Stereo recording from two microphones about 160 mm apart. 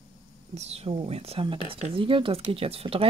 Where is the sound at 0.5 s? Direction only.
40° right (ahead or behind).